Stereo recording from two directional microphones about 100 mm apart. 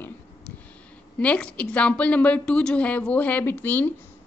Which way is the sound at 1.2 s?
10° left (ahead or behind).